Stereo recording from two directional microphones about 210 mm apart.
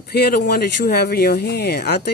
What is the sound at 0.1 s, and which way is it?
Speech, 50° left (ahead or behind).